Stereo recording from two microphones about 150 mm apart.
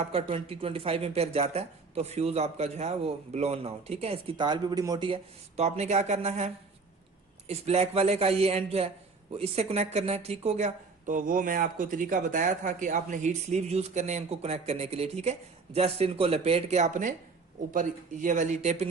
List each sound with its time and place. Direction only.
0.0 s a man's voice: 40° right (ahead or behind)